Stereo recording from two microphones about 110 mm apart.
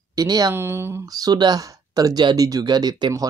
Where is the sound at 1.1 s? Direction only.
35° right (ahead or behind).